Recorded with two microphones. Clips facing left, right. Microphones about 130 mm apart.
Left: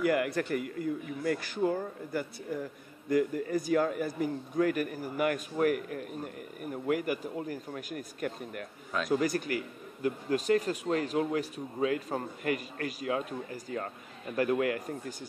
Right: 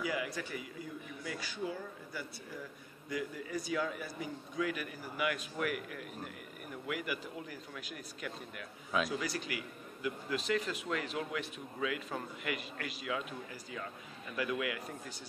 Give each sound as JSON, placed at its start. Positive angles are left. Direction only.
{"t": 0.0, "sound": "a man's voice", "side_deg": 60}